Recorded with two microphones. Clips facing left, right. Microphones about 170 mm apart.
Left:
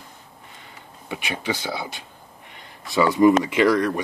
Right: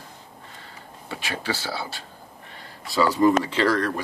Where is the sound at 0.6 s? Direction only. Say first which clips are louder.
Right 1 dB; 15° left (ahead or behind).